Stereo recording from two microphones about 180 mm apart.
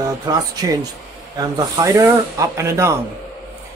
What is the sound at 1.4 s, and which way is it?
Speech, 20° right (ahead or behind).